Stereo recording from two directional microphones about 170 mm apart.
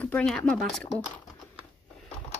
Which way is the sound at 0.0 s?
5° left (ahead or behind).